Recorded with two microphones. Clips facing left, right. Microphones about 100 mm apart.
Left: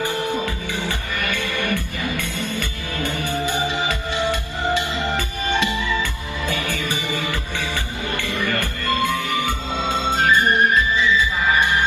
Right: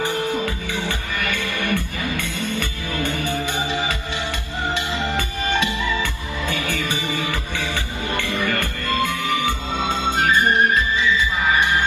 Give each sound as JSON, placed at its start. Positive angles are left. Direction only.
{"t": 1.7, "sound": "music", "side_deg": -55}
{"t": 6.7, "sound": "music", "side_deg": -50}